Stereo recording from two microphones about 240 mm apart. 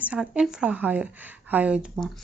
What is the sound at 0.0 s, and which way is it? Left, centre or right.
A woman's voice, centre.